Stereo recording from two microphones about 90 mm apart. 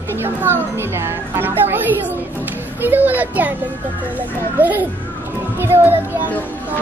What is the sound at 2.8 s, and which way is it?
Speech, 20° right (ahead or behind).